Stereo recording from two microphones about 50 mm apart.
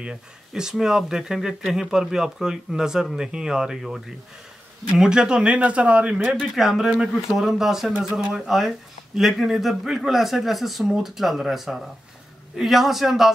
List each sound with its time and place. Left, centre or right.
0.5 s speech: centre
6.5 s speech: centre